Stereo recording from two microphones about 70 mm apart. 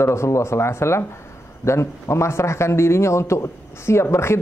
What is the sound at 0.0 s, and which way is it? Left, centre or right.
A man's voice, left.